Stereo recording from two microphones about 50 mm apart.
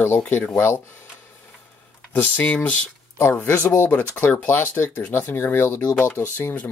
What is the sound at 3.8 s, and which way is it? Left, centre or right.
Speech, left.